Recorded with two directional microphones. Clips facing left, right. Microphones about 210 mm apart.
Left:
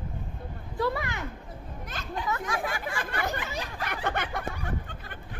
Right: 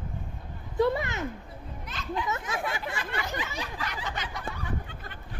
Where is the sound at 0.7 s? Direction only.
20° right (ahead or behind).